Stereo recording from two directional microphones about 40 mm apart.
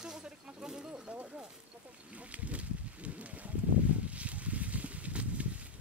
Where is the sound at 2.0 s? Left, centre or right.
Right.